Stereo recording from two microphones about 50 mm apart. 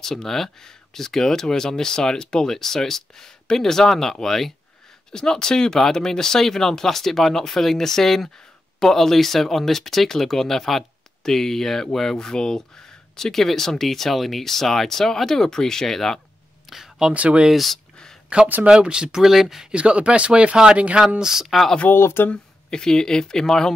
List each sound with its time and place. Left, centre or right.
0.0 s speech: centre
16.6 s a sound: centre
17.1 s speech: right
17.5 s speech: centre
18.3 s speech: right
19.2 s speech: centre
19.7 s speech: right
21.2 s speech: centre
21.9 s speech: left
22.3 s speech: centre